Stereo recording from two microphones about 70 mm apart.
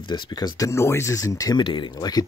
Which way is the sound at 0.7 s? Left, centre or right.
Left.